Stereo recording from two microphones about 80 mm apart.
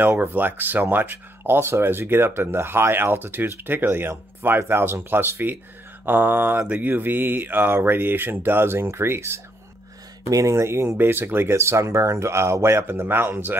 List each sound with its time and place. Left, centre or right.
0.1 s speech: right